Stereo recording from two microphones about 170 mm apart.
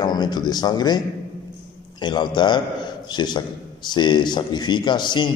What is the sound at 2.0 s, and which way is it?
A man's voice, 25° left (ahead or behind).